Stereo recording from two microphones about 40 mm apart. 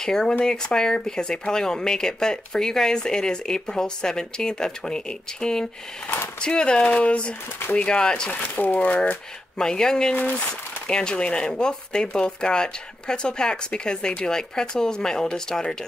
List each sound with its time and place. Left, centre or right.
0.0 s speech: centre; by 9.2 s left
9.6 s speech: centre